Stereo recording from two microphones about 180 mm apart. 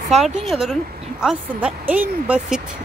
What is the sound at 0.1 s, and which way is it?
Speech, centre (ahead or behind).